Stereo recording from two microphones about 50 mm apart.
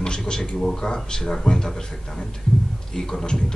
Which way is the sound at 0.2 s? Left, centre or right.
Centre.